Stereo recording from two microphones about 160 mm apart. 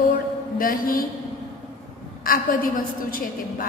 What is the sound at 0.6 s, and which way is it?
Speech, 65° left (ahead or behind).